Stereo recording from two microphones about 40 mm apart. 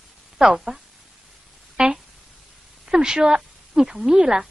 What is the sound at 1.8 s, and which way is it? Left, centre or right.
Speech, right.